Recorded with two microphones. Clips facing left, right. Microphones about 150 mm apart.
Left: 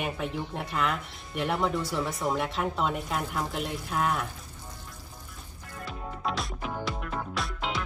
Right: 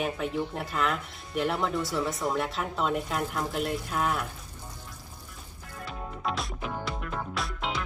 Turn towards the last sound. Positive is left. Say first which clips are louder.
# even
turn(degrees=0)  # may be behind; listen again after turning